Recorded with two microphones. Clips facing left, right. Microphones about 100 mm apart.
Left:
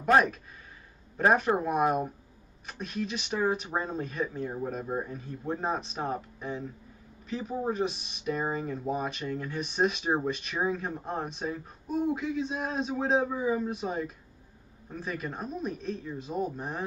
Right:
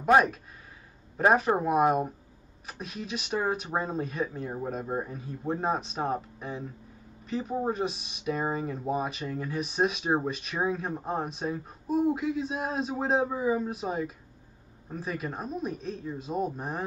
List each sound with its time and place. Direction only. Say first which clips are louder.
0.0 s speech: right 1 dB; centre (ahead or behind)